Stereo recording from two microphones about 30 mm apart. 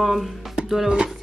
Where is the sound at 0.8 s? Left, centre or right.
Right.